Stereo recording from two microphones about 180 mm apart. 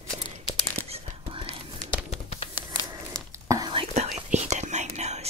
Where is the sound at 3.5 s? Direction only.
25° right (ahead or behind).